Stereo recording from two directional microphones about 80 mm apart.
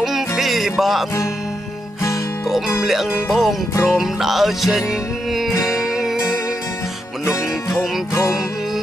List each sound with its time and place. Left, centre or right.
0.0 s music: centre
2.8 s music: centre
7.2 s music: left